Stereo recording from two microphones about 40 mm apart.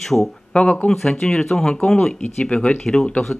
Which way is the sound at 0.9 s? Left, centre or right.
Centre.